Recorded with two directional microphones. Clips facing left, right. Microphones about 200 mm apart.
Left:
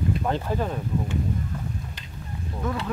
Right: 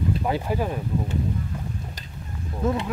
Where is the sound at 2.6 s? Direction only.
25° right (ahead or behind).